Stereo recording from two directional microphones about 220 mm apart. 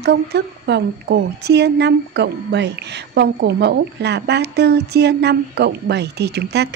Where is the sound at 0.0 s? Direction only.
50° right (ahead or behind).